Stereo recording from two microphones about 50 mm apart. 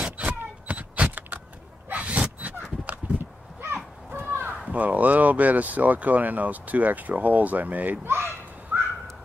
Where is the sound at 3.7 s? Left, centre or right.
Right.